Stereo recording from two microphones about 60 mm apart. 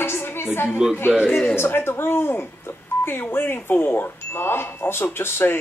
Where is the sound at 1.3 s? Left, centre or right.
Left.